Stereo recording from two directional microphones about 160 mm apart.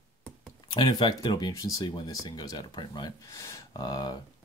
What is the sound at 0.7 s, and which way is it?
Speech, 30° left (ahead or behind).